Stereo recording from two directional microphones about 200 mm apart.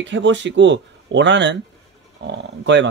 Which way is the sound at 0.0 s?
65° right (ahead or behind).